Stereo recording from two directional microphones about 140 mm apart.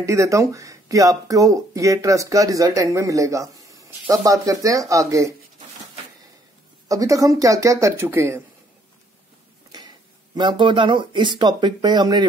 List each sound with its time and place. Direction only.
0.0 s speech: 20° right (ahead or behind)
6.9 s speech: 25° right (ahead or behind)
9.7 s speech: 30° right (ahead or behind)